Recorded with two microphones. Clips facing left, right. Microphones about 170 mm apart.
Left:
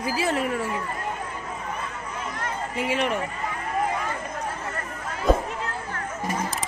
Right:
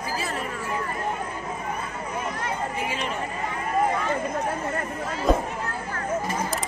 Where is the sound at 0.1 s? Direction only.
80° left.